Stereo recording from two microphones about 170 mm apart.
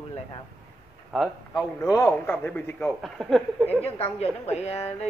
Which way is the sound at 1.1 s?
Centre (ahead or behind).